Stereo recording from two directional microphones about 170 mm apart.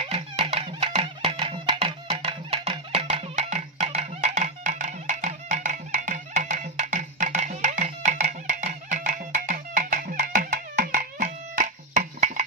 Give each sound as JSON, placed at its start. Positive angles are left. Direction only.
{"t": 0.0, "sound": "music", "side_deg": -35}